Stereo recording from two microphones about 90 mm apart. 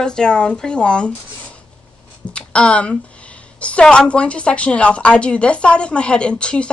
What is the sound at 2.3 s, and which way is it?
A woman's voice, 10° left (ahead or behind).